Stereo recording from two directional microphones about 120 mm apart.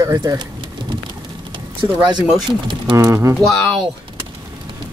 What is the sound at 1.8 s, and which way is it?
Speech, 35° right (ahead or behind).